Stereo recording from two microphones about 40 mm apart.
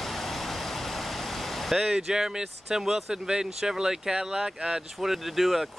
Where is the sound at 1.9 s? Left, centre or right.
Centre.